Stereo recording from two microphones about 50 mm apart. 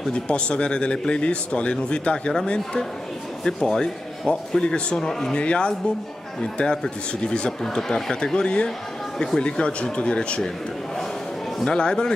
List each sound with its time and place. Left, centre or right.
0.1 s speech: left
3.4 s speech: centre
5.4 s speech: left
11.6 s speech: centre